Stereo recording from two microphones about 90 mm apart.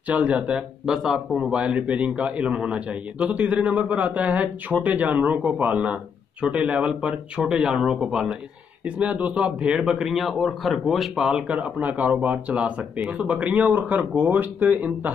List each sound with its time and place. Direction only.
0.1 s speech: 15° right (ahead or behind)